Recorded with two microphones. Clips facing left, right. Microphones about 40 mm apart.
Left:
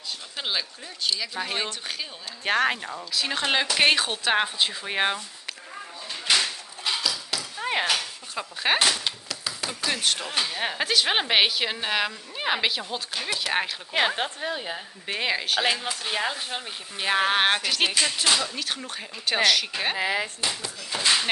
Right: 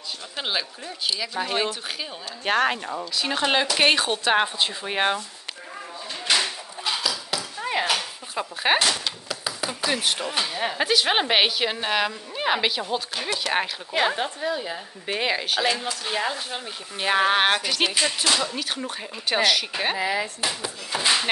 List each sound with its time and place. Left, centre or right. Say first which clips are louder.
0.4 s a woman's voice: right 2 dB; centre
6.2 s a sound: right 1 dB; centre
9.3 s a woman's voice: right 3 dB; centre
14.1 s a woman's voice: right 2 dB; left
15.0 s a woman's voice: right 2 dB; centre
15.6 s a woman's voice: right 1 dB; centre
20.0 s a woman's voice: left 1 dB; left
20.3 s speech: right 2 dB; centre